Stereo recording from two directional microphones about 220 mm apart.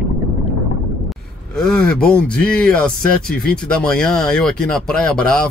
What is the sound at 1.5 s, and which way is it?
Speech, 5° left (ahead or behind).